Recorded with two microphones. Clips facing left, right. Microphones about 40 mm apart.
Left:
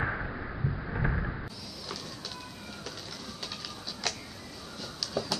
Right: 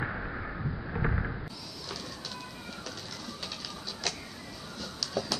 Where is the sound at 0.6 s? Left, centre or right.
Centre.